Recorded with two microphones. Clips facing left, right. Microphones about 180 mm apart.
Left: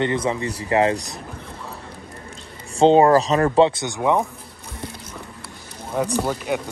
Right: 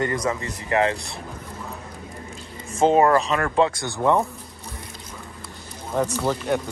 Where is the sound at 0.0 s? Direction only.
25° left (ahead or behind).